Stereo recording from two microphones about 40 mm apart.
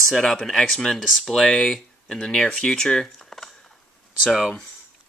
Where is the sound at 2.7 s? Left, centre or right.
Centre.